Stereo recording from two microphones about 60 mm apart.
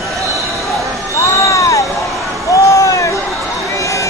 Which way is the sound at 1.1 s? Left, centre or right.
Left.